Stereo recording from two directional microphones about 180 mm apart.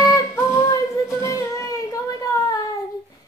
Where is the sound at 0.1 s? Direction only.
20° left (ahead or behind).